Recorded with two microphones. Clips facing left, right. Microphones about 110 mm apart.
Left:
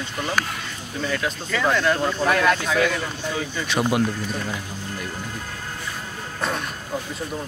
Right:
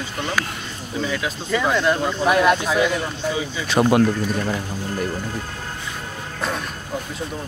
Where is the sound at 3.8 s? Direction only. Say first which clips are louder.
Right 6 dB; 55° right (ahead or behind).